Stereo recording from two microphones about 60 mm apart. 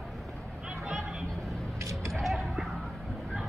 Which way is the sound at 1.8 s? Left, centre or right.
Right.